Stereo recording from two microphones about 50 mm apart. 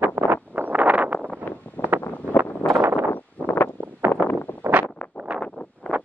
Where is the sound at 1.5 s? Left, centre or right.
Left.